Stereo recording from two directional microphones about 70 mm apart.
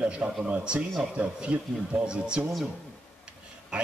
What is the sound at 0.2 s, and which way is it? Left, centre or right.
A man's voice, centre.